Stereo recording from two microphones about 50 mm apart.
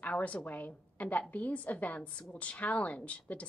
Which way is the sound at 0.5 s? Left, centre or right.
Left.